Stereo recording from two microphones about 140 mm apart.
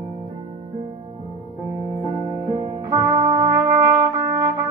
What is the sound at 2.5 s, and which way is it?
Music, 40° right (ahead or behind).